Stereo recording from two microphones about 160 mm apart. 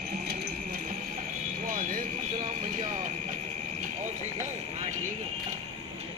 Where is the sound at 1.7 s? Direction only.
60° right (ahead or behind).